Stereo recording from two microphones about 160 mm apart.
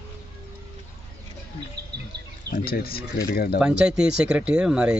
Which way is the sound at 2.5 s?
70° left (ahead or behind).